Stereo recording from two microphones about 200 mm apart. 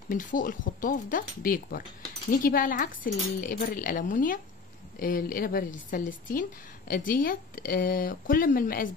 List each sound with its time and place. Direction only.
0.1 s speech: 40° left (ahead or behind)